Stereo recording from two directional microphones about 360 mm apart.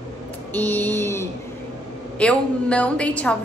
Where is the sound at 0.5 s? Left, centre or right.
Centre.